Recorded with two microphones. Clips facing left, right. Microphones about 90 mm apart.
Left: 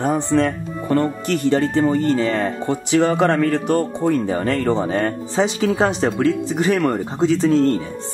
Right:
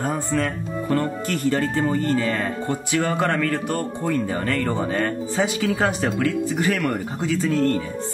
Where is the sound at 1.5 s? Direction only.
25° left (ahead or behind).